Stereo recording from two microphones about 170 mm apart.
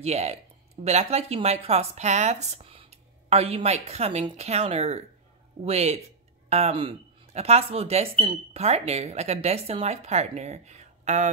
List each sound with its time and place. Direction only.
0.0 s speech: 40° right (ahead or behind)